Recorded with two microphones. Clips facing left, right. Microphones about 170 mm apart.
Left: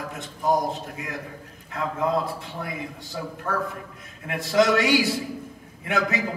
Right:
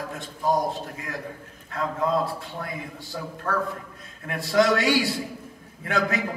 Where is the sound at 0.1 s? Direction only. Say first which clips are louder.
Left 1 dB; 20° left (ahead or behind).